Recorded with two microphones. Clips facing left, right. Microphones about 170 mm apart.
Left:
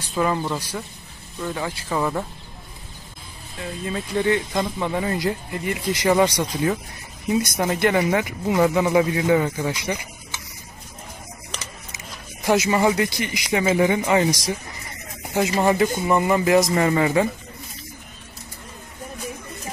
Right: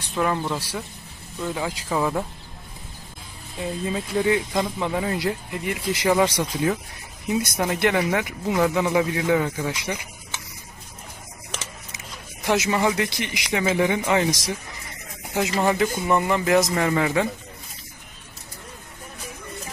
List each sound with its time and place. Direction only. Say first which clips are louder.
0.1 s speech: left 1 dB; centre (ahead or behind)
3.9 s speech: left 1 dB; 5° right (ahead or behind)
12.4 s speech: left 3 dB; centre (ahead or behind)